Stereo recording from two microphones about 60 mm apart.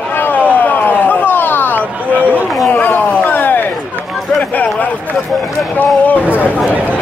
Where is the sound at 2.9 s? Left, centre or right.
Left.